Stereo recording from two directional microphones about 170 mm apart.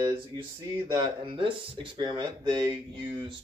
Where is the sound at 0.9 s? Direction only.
30° right (ahead or behind).